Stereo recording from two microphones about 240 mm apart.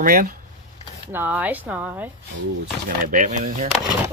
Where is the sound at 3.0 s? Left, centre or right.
Right.